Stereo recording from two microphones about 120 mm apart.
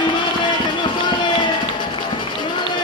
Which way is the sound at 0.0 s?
40° left (ahead or behind).